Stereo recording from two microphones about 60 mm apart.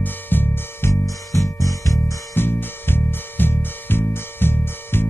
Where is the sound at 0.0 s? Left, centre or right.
Left.